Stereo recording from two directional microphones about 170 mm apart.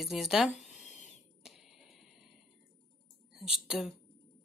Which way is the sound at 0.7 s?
45° left (ahead or behind).